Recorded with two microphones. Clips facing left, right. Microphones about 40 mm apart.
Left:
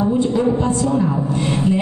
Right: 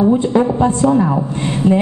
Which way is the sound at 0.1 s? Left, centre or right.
Right.